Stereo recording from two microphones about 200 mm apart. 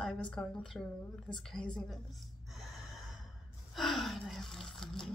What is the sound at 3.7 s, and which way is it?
Gasp, centre (ahead or behind).